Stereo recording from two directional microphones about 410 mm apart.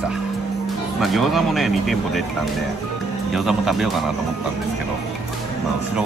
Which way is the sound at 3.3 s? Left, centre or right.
Centre.